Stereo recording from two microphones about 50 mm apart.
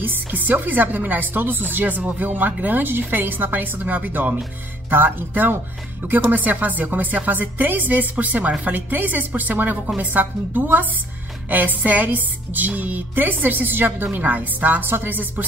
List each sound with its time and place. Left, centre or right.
0.0 s speech: right